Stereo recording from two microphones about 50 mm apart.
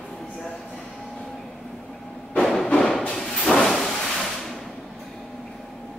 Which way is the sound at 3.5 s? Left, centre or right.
Centre.